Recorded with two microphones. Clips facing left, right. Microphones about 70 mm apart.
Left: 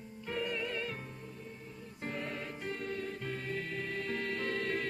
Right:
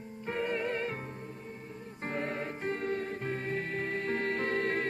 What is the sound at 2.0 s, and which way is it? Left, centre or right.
Music, right.